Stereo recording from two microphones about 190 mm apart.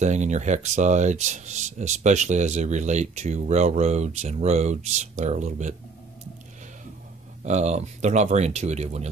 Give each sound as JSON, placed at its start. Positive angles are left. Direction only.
{"t": 0.0, "sound": "speech", "side_deg": -40}
{"t": 7.4, "sound": "speech", "side_deg": -35}